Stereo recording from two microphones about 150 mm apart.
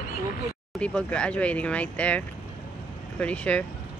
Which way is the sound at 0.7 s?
5° left (ahead or behind).